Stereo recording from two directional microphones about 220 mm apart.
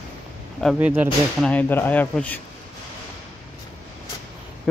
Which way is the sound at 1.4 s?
10° left (ahead or behind).